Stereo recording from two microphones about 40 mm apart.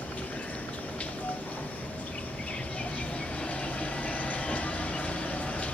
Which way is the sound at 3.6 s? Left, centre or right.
Left.